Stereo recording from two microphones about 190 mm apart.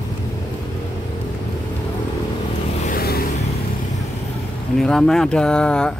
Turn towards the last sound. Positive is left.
turn(degrees=5)  # may be behind; listen again after turning